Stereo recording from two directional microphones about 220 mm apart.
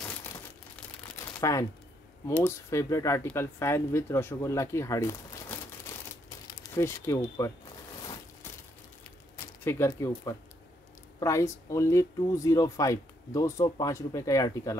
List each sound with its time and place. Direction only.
1.4 s speech: 15° left (ahead or behind)
8.0 s a sound: 15° left (ahead or behind)
9.7 s speech: 10° left (ahead or behind)